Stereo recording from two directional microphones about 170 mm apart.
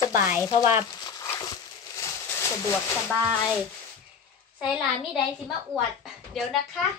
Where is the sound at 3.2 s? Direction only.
5° right (ahead or behind).